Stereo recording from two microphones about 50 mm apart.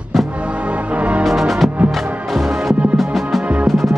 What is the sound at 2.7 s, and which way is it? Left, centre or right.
Music, right.